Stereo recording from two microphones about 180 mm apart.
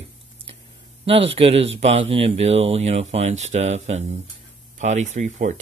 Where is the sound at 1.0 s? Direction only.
35° right (ahead or behind).